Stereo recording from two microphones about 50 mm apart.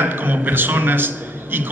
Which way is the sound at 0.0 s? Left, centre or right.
Right.